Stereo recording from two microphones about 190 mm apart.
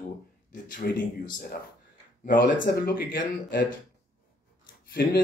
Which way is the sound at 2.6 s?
55° left (ahead or behind).